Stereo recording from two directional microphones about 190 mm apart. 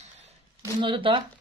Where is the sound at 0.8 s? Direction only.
25° right (ahead or behind).